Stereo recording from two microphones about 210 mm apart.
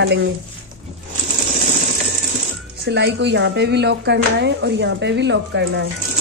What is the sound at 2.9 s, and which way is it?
Speech, 55° right (ahead or behind).